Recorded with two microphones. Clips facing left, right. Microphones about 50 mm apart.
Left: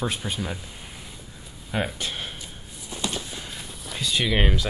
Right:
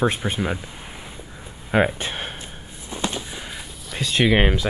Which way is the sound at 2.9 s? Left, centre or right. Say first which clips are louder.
Right 3 dB; right.